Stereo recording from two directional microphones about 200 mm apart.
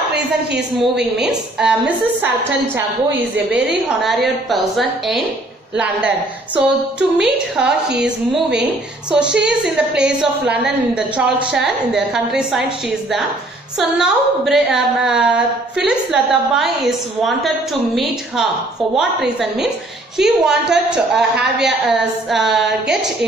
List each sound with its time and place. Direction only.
0.1 s a woman's voice: 55° right (ahead or behind)
1.2 s a woman's voice: 5° right (ahead or behind)
4.0 s a woman's voice: centre (ahead or behind)
13.7 s a woman's voice: 5° right (ahead or behind)